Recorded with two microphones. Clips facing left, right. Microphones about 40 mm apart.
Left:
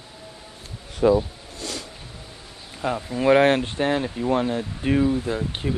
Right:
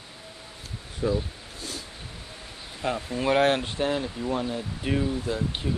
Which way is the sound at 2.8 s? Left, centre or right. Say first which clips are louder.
Left 3 dB; centre.